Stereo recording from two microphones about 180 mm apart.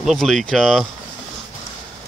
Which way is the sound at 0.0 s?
Centre (ahead or behind).